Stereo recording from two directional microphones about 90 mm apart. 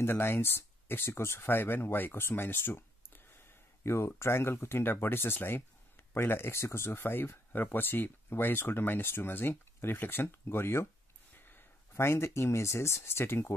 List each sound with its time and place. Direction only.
0.0 s speech: 25° left (ahead or behind)